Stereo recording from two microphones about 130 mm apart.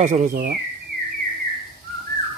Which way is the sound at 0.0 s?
70° right (ahead or behind).